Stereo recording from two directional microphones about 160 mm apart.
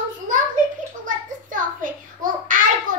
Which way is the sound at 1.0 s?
55° right (ahead or behind).